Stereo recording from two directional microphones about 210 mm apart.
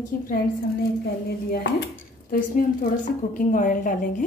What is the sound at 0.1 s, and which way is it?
Speech, 40° left (ahead or behind).